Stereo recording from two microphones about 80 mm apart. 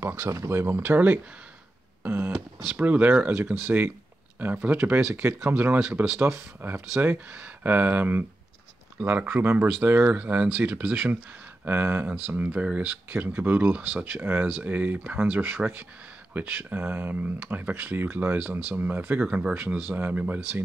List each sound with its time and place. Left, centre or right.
0.0 s speech: right
0.3 s speech: right
0.8 s speech: right
2.0 s beatboxing: right
2.8 s speech: centre
11.6 s speech: right